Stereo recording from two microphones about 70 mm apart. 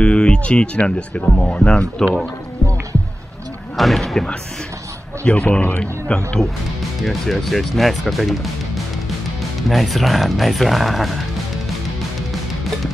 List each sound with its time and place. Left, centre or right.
0.0 s speech: centre
3.7 s speech: centre
5.2 s speech: centre
6.4 s speech: centre